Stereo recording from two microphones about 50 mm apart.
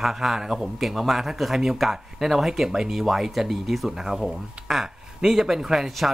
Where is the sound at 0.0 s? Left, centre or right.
Centre.